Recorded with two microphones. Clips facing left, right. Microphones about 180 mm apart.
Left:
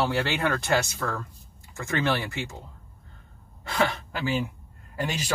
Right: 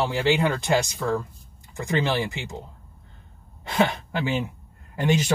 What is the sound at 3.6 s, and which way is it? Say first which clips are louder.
A man's voice: right 3 dB; 20° right (ahead or behind).